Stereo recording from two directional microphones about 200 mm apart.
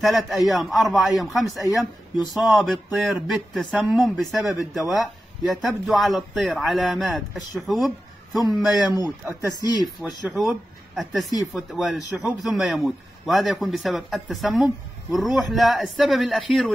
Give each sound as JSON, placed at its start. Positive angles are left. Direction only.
{"t": 0.0, "sound": "a man's voice", "side_deg": 0}
{"t": 8.9, "sound": "speech", "side_deg": -15}
{"t": 9.8, "sound": "a man's voice", "side_deg": 0}
{"t": 11.5, "sound": "a man's voice", "side_deg": 0}